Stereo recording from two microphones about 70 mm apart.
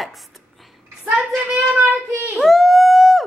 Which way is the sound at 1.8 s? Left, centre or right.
Centre.